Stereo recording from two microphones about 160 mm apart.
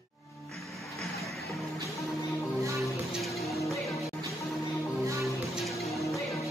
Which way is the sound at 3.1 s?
Centre (ahead or behind).